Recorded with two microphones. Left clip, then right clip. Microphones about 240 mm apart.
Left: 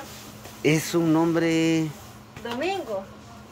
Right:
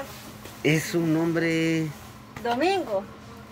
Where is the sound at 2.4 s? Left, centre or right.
Right.